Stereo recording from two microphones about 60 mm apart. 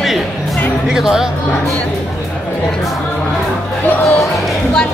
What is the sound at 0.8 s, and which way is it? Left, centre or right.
Speech, centre.